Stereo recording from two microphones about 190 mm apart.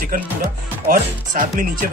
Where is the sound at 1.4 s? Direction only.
45° right (ahead or behind).